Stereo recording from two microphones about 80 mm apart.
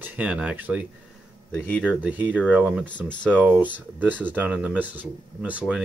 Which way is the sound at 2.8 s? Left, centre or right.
Centre.